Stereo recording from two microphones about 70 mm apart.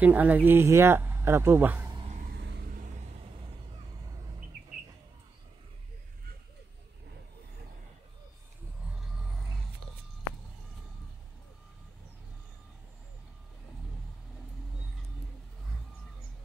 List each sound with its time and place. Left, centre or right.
0.0 s speech: right